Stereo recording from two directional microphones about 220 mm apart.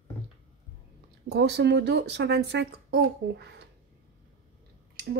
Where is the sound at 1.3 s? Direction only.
50° right (ahead or behind).